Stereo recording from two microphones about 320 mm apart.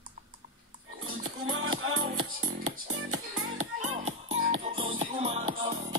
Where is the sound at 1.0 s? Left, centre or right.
Right.